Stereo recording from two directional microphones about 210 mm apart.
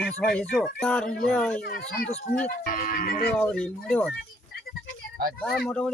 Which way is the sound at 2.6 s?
40° left (ahead or behind).